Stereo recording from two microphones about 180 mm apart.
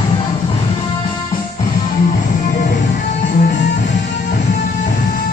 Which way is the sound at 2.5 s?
45° left (ahead or behind).